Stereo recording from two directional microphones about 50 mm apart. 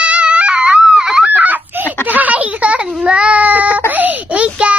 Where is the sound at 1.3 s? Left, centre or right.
Right.